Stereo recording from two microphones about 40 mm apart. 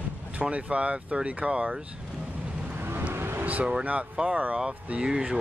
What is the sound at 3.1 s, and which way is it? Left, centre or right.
Vehicle, right.